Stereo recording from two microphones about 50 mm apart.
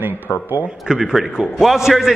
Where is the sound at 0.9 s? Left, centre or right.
Centre.